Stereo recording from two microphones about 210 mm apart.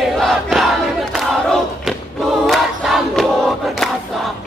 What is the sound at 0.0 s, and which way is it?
Crowd, centre (ahead or behind).